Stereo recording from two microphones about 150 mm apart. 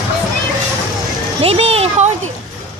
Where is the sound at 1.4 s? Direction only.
40° right (ahead or behind).